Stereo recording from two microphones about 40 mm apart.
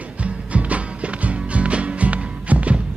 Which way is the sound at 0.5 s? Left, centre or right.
Right.